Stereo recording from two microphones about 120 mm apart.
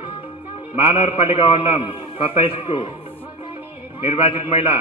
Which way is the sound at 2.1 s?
50° left (ahead or behind).